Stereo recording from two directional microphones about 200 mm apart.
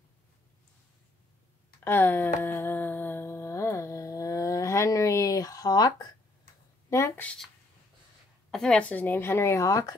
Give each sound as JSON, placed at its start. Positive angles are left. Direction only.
{"t": 1.9, "sound": "a woman's voice", "side_deg": 10}
{"t": 2.4, "sound": "humming", "side_deg": 10}
{"t": 6.9, "sound": "a woman's voice", "side_deg": 15}
{"t": 8.5, "sound": "a woman's voice", "side_deg": 5}